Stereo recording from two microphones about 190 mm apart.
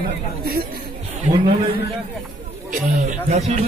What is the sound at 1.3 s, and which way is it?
Speech, 25° right (ahead or behind).